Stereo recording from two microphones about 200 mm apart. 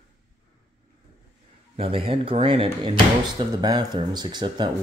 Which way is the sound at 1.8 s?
25° right (ahead or behind).